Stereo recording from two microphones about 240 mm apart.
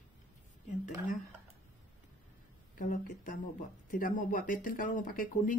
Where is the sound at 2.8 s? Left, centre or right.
Left.